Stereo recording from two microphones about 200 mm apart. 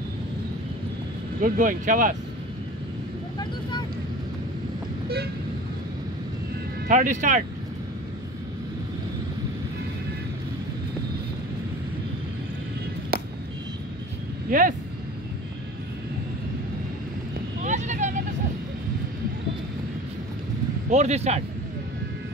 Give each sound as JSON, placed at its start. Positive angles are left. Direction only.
{"t": 1.4, "sound": "speech", "side_deg": -40}
{"t": 6.9, "sound": "speech", "side_deg": -40}
{"t": 13.1, "sound": "vehicle", "side_deg": -50}
{"t": 14.5, "sound": "speech", "side_deg": -40}
{"t": 17.6, "sound": "vehicle", "side_deg": -35}
{"t": 20.9, "sound": "speech", "side_deg": -35}